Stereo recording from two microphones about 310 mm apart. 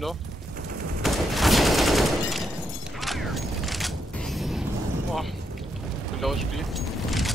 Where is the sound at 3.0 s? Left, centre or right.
Centre.